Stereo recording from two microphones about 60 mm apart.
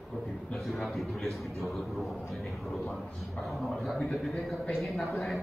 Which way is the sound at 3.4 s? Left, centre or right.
Centre.